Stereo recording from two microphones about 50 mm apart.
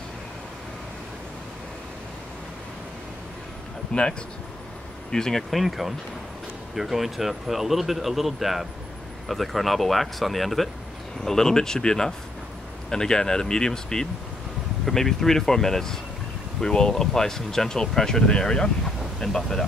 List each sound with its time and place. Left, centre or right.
3.9 s speech: left
5.1 s speech: centre
5.5 s speech: centre